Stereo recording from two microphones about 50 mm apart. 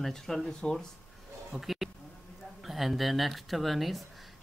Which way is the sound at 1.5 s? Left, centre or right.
Centre.